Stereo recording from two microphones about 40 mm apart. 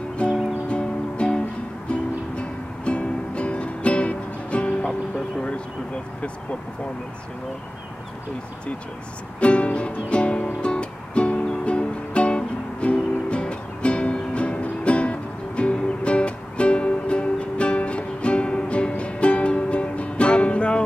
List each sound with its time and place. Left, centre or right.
0.7 s music: left
9.4 s music: left